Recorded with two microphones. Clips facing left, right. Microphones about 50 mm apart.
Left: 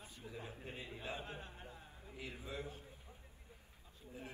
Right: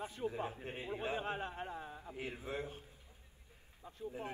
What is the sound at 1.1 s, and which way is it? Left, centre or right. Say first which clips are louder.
Speech: right 9 dB; right.